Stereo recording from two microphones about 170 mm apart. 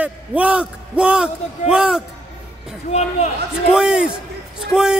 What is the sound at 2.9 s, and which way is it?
Speech, 40° left (ahead or behind).